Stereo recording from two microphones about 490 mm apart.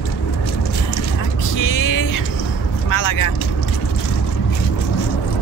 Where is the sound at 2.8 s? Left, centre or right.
Left.